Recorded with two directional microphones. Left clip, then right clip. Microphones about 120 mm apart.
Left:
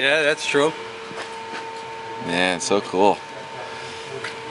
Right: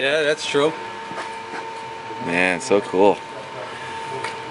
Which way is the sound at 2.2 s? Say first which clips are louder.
Right 2 dB; 10° left (ahead or behind).